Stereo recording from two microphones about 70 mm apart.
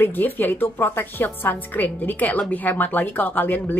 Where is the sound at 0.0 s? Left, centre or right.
Left.